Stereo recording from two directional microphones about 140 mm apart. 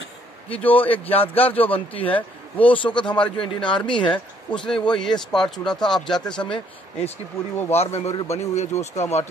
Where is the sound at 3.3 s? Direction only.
40° left (ahead or behind).